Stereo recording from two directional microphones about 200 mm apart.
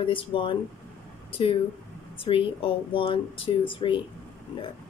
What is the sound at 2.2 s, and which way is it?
Speech, 25° left (ahead or behind).